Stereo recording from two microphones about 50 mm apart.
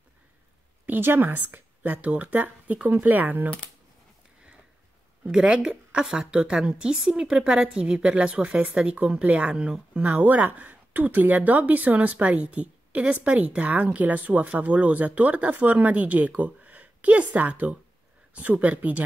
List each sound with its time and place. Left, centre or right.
0.8 s speech: right
5.2 s a woman's voice: right